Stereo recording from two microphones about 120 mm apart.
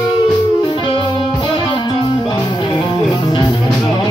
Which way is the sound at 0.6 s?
40° left (ahead or behind).